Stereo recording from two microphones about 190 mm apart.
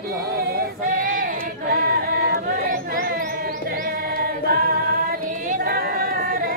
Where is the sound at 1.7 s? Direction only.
50° right (ahead or behind).